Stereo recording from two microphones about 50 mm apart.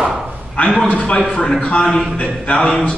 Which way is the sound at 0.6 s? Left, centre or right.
Left.